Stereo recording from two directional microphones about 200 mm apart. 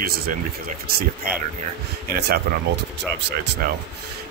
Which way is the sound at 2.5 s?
50° right (ahead or behind).